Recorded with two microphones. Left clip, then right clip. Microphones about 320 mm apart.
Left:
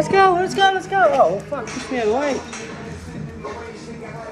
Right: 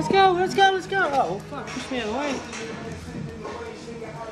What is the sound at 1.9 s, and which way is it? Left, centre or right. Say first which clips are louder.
Speech: left 8 dB; centre.